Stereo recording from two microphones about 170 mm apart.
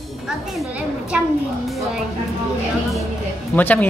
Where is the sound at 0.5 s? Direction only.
5° right (ahead or behind).